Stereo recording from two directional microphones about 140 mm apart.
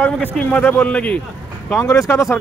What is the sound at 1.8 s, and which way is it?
Speech, 20° left (ahead or behind).